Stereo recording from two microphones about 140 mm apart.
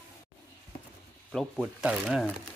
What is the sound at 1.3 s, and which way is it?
Speech, centre (ahead or behind).